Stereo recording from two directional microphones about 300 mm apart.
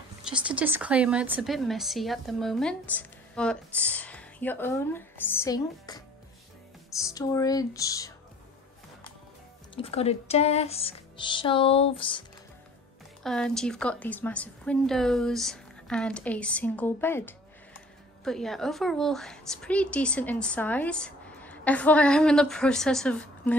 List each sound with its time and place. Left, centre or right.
0.2 s speech: centre
7.1 s speech: centre
9.8 s speech: centre
13.2 s speech: centre